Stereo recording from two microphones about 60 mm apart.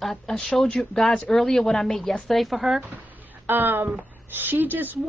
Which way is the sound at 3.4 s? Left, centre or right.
Right.